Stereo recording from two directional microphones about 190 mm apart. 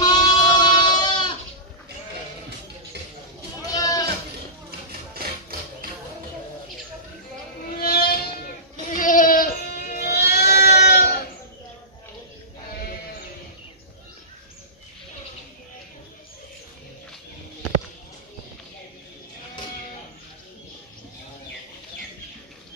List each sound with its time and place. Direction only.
0.0 s goat: 20° left (ahead or behind)
3.7 s goat: 20° left (ahead or behind)
5.8 s music: 50° right (ahead or behind)
7.8 s music: 50° left (ahead or behind)
8.9 s goat: 45° left (ahead or behind); by 11.1 s 60° left (ahead or behind)